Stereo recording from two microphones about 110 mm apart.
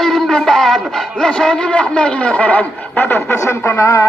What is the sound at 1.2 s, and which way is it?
Speech, 5° left (ahead or behind).